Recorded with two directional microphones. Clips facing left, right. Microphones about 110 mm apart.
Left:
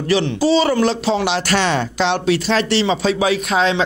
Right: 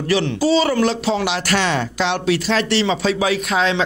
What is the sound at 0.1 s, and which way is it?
Speech, 25° left (ahead or behind).